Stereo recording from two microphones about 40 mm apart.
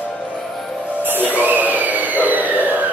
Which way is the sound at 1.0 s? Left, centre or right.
Right.